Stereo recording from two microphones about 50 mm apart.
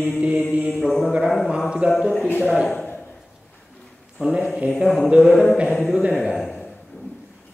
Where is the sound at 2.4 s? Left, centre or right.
Centre.